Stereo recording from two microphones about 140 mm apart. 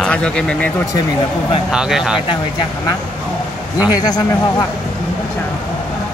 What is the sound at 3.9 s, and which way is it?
Speech, 30° left (ahead or behind).